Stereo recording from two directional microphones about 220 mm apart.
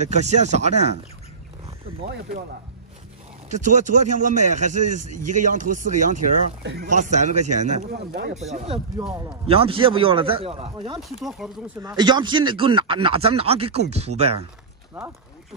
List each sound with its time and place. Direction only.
0.0 s a man's voice: 30° right (ahead or behind)
3.4 s a man's voice: 35° right (ahead or behind)
4.9 s a man's voice: 90° right
5.3 s a man's voice: 35° right (ahead or behind)
6.6 s speech: 50° right (ahead or behind)
7.0 s a man's voice: 35° right (ahead or behind)
11.1 s speech: centre (ahead or behind)
11.8 s speech: 20° right (ahead or behind)